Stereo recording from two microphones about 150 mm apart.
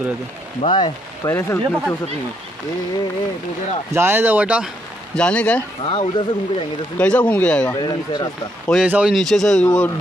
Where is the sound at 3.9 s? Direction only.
15° right (ahead or behind).